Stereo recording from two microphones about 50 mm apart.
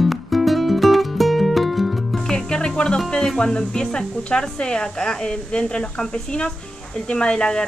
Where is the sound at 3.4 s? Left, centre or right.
Centre.